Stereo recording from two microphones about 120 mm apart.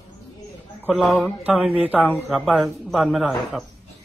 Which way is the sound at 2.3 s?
Centre (ahead or behind).